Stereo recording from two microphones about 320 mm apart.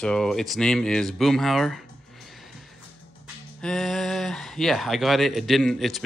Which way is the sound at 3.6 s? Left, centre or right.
Centre.